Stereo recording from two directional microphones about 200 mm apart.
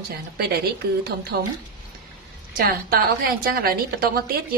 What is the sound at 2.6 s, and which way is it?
A woman's voice, 45° right (ahead or behind).